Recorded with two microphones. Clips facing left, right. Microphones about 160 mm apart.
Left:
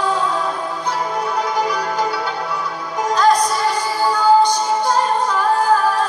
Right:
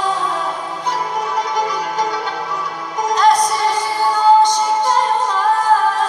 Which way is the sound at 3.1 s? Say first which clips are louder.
Right 1 dB; 20° right (ahead or behind).